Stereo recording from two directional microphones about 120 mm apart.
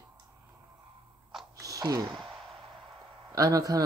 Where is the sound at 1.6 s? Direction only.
30° right (ahead or behind).